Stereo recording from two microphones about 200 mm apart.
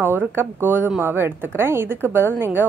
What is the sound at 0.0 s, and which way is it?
Speech, 10° right (ahead or behind).